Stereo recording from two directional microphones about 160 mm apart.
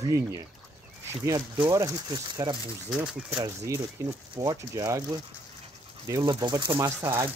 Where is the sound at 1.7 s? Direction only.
20° right (ahead or behind).